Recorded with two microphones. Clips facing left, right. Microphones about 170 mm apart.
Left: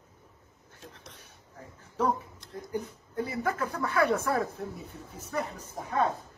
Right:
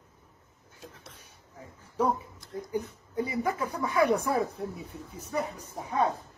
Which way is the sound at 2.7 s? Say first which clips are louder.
Right 1 dB; 10° right (ahead or behind).